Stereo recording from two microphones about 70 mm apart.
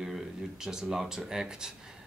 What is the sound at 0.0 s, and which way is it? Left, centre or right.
Speech, centre.